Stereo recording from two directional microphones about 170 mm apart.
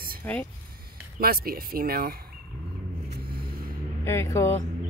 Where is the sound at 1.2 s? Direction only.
60° right (ahead or behind).